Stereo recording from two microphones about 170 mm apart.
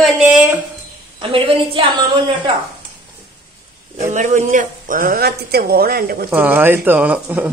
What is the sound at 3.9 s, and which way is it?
Speech, 45° right (ahead or behind).